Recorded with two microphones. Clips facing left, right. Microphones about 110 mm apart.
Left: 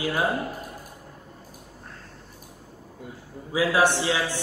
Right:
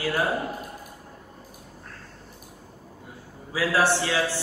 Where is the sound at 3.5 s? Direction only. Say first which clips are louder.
Left 1 dB; 20° left (ahead or behind).